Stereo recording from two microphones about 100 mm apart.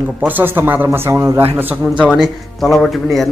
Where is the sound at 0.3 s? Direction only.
20° right (ahead or behind).